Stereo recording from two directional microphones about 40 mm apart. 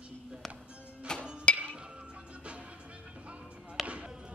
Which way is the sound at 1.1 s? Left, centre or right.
Centre.